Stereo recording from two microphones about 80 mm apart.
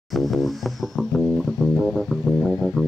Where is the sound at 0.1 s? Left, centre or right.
Centre.